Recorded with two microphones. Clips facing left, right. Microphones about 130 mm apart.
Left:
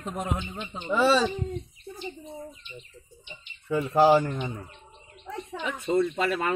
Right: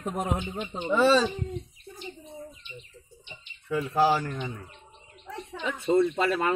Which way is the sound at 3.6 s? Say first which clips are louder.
Left 4 dB; 25° left (ahead or behind).